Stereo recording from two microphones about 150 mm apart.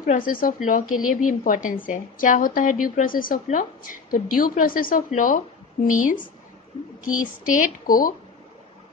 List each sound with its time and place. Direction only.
0.0 s a woman's voice: 65° left (ahead or behind)